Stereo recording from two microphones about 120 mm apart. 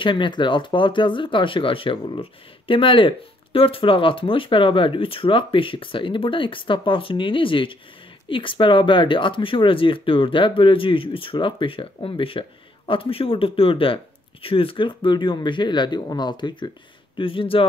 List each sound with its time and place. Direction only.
0.0 s speech: 45° left (ahead or behind)